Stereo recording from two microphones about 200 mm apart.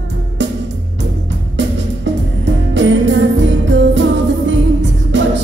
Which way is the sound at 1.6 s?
65° right (ahead or behind).